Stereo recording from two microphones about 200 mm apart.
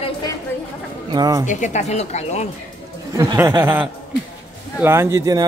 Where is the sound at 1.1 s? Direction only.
20° right (ahead or behind).